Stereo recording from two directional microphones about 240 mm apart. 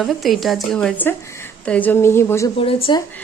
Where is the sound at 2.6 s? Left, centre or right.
Left.